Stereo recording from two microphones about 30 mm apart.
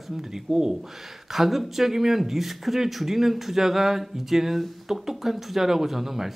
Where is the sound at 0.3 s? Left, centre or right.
Centre.